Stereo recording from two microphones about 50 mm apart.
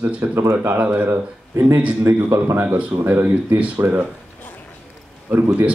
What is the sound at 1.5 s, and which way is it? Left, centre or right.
Speech, right.